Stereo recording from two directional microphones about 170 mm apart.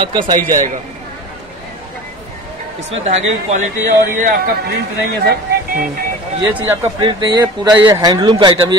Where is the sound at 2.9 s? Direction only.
40° right (ahead or behind).